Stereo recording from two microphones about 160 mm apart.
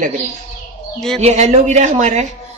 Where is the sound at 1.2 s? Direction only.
45° right (ahead or behind).